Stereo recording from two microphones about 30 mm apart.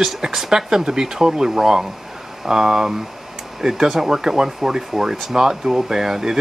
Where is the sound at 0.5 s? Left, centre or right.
Centre.